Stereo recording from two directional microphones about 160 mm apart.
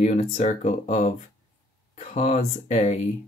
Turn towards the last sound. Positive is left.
turn(degrees=45)  # may be behind; listen again after turning